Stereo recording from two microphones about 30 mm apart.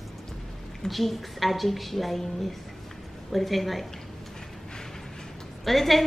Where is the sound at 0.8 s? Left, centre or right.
Centre.